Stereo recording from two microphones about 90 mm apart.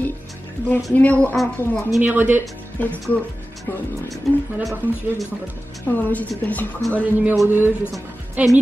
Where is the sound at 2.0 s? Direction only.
20° right (ahead or behind).